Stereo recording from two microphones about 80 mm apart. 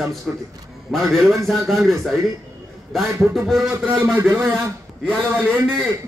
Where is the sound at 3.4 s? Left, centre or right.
Centre.